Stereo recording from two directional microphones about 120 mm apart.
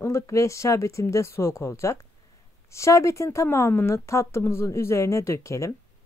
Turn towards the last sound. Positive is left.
turn(degrees=25)  # may be behind; listen again after turning